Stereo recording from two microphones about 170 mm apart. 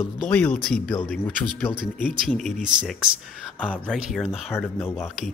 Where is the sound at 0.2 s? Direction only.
10° left (ahead or behind).